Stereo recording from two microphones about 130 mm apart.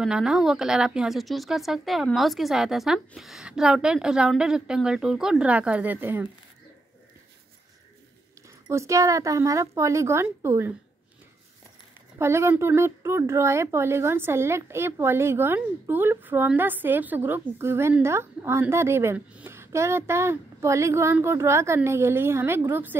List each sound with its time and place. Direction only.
0.0 s a woman's voice: 5° right (ahead or behind)
8.5 s a woman's voice: 20° right (ahead or behind)
12.2 s a woman's voice: 20° right (ahead or behind)